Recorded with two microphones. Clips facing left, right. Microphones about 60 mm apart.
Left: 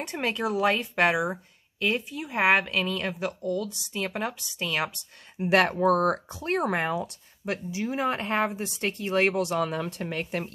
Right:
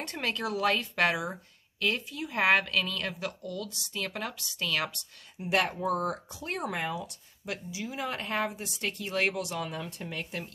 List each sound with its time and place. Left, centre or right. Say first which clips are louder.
0.0 s a woman's voice: left 4 dB; centre
5.4 s speech: left 7 dB; left
10.1 s speech: left 6 dB; left